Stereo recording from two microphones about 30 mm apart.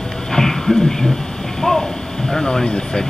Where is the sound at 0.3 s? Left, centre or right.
Centre.